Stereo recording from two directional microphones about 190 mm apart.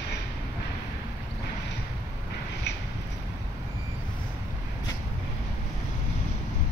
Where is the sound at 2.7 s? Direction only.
65° left (ahead or behind).